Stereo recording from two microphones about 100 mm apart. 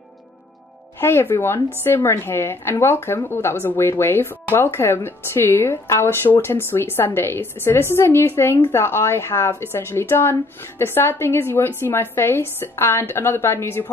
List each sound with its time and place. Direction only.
0.9 s speech: 20° left (ahead or behind)